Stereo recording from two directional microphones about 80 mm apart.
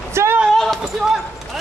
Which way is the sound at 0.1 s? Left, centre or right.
Right.